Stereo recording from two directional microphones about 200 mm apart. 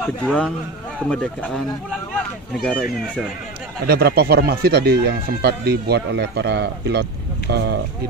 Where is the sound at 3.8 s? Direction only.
50° right (ahead or behind).